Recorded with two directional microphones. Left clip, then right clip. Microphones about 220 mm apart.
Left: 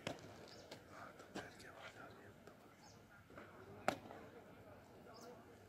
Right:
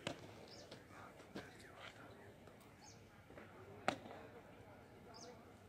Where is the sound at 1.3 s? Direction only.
20° left (ahead or behind).